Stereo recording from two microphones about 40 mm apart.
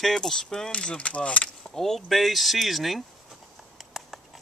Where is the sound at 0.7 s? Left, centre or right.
Left.